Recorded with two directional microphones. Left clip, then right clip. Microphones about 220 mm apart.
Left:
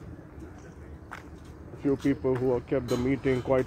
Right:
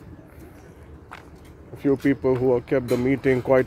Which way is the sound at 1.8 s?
40° right (ahead or behind).